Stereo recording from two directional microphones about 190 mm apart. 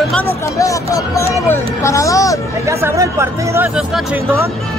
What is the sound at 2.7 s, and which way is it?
Speech, 15° right (ahead or behind).